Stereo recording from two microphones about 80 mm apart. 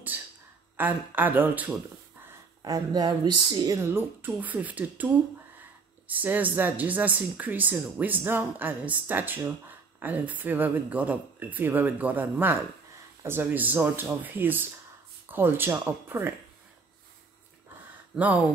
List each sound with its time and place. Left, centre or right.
0.1 s a sound: right
0.7 s speech: right
2.6 s a woman's voice: right
3.7 s speech: right
18.1 s speech: centre